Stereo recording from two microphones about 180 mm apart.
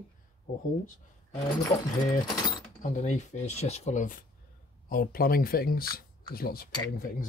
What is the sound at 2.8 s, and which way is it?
Speech, 40° left (ahead or behind).